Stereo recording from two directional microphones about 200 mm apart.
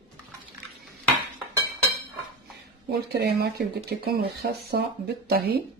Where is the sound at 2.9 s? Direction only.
55° right (ahead or behind).